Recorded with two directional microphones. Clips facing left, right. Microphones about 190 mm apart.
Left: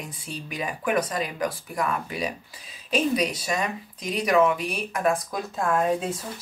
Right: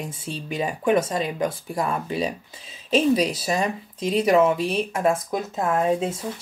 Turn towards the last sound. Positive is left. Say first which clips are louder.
# right 2 dB
turn(degrees=-20)  # may be behind; listen again after turning